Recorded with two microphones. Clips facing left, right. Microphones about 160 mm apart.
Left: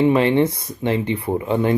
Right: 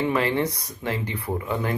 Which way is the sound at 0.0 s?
25° left (ahead or behind).